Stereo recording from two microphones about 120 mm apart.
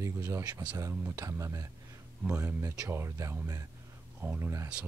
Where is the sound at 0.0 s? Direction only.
25° right (ahead or behind).